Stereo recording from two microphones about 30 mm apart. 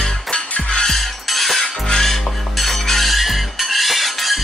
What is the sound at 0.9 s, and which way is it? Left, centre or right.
Music, centre.